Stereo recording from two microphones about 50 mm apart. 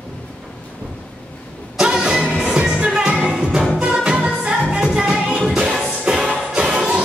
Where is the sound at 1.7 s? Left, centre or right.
Centre.